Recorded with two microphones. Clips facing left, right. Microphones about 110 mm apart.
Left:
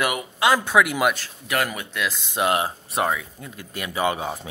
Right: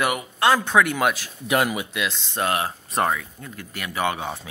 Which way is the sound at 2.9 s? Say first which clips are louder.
Right 1 dB; 5° left (ahead or behind).